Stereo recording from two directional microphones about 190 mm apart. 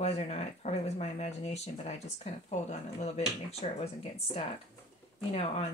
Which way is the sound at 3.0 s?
35° left (ahead or behind).